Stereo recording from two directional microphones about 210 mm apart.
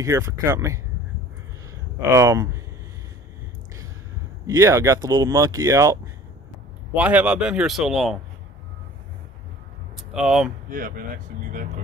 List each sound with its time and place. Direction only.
0.0 s speech: 15° right (ahead or behind)
2.0 s speech: 15° right (ahead or behind)
4.5 s speech: 15° right (ahead or behind)
7.0 s a man's voice: 5° right (ahead or behind)
9.9 s speech: 5° right (ahead or behind)
10.7 s speech: 40° right (ahead or behind)